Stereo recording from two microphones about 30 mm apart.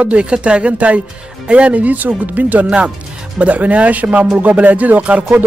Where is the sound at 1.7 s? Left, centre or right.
Right.